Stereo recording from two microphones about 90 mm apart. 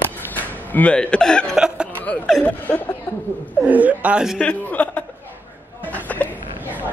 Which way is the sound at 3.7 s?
15° right (ahead or behind).